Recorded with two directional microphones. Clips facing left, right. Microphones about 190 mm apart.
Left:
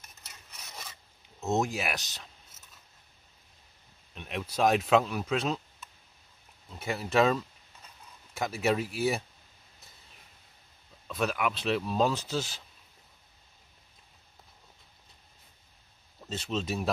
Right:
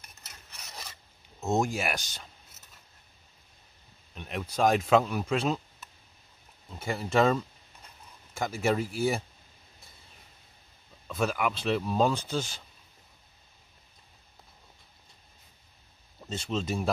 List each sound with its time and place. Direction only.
1.4 s speech: centre (ahead or behind)
4.1 s speech: centre (ahead or behind)
6.7 s speech: centre (ahead or behind)
11.1 s speech: centre (ahead or behind)
16.2 s speech: centre (ahead or behind)